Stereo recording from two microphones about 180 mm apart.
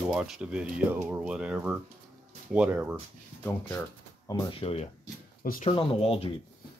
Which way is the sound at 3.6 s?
15° left (ahead or behind).